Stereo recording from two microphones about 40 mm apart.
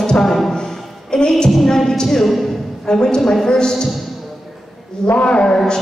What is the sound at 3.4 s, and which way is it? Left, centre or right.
Mantra, centre.